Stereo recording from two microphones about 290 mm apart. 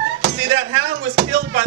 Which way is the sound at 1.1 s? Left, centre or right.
Right.